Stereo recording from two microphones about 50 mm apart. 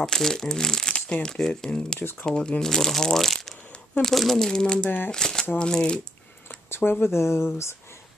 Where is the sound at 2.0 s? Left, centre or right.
Left.